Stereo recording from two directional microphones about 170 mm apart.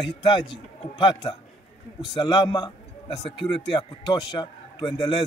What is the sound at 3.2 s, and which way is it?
Speech, centre (ahead or behind).